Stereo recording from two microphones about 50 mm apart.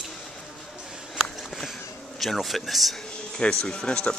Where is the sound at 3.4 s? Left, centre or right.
Centre.